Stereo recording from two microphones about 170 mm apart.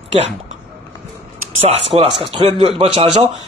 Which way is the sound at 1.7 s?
35° right (ahead or behind).